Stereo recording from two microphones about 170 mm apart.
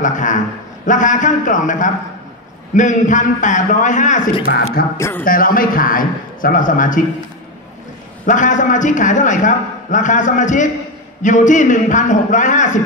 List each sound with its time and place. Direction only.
0.0 s a man's voice: 45° left (ahead or behind)
4.9 s a man's voice: 15° left (ahead or behind)
5.2 s a man's voice: 55° left (ahead or behind)
8.3 s a man's voice: 45° left (ahead or behind)